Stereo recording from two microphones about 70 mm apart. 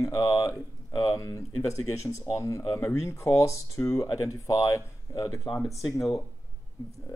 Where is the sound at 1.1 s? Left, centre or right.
Left.